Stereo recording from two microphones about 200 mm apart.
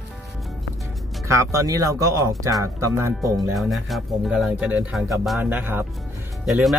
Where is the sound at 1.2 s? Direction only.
15° right (ahead or behind).